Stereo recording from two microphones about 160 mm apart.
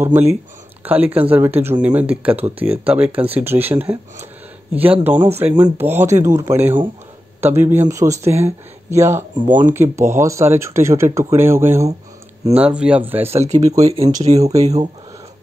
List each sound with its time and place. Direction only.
0.0 s speech: 15° right (ahead or behind)
9.5 s speech: 55° right (ahead or behind)
9.8 s speech: 15° right (ahead or behind)
13.3 s speech: 45° right (ahead or behind)